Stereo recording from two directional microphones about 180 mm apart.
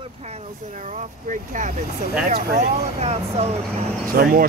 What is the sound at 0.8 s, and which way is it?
Speech, 45° right (ahead or behind).